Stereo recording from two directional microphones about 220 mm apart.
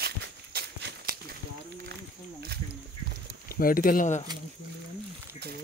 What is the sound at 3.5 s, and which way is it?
Speech, 40° left (ahead or behind).